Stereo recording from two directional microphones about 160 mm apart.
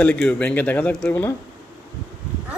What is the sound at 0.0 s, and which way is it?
Speech, 5° left (ahead or behind).